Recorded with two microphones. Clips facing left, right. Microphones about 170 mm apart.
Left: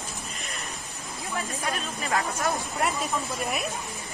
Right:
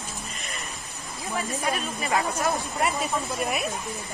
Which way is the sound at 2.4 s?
Centre (ahead or behind).